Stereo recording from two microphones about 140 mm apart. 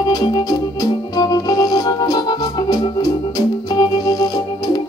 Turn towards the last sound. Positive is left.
turn(degrees=25)  # may be behind; listen again after turning